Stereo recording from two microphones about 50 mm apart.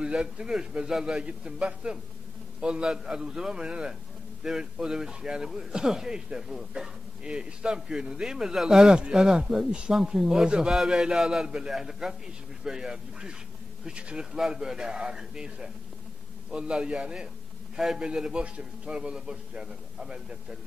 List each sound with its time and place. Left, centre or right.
0.0 s a man's voice: centre
9.9 s a man's voice: centre